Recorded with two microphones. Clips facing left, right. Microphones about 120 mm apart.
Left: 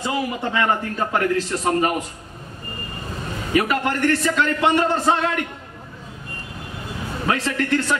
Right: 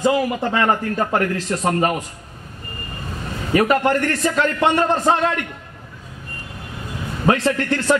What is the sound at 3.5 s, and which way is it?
A man's voice, 35° right (ahead or behind).